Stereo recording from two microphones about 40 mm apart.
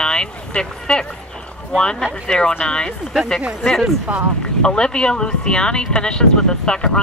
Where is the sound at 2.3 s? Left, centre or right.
Centre.